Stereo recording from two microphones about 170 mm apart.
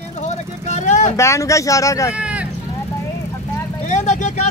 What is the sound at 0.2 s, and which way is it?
Vehicle, 45° left (ahead or behind).